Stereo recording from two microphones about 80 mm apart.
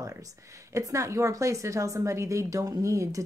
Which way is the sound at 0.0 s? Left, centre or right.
Right.